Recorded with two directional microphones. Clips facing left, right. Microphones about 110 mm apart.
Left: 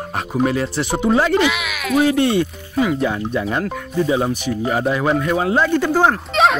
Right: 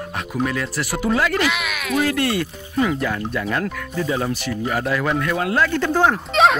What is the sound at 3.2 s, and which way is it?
Speech, 20° left (ahead or behind).